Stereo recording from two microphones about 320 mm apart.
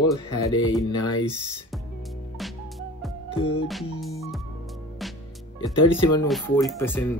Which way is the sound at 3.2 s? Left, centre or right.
Centre.